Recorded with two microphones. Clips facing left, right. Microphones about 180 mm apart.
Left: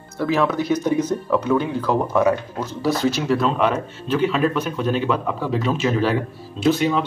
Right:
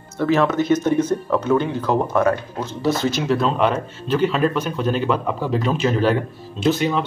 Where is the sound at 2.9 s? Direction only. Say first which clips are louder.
Even; 35° left (ahead or behind).